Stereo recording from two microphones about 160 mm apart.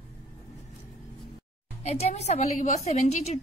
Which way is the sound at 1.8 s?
40° left (ahead or behind).